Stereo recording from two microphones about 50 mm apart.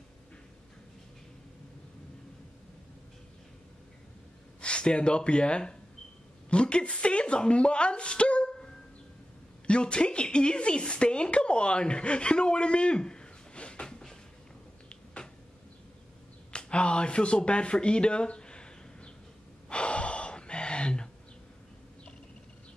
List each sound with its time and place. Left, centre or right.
4.6 s speech: left
16.5 s speech: left
19.7 s gasp: left